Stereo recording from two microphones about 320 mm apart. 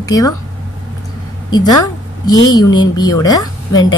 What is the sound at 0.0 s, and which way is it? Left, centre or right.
Speech, centre.